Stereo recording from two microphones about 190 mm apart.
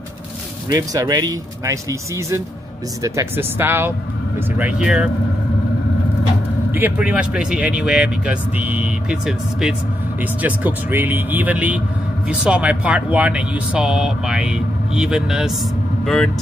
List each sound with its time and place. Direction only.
0.7 s a man's voice: 20° right (ahead or behind); by 5.1 s 5° right (ahead or behind)
6.7 s a man's voice: 10° right (ahead or behind)